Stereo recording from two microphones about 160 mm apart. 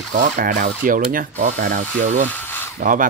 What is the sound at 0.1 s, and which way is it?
Speech, 55° right (ahead or behind).